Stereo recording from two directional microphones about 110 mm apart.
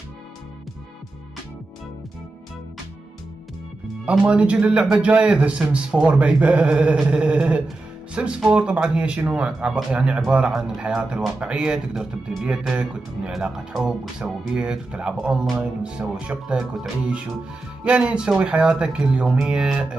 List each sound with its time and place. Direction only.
4.0 s speech: 10° right (ahead or behind)